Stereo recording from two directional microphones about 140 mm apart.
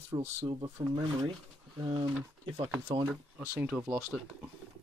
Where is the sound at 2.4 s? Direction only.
40° right (ahead or behind).